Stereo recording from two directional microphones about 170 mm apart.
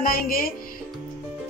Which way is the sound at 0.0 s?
55° left (ahead or behind).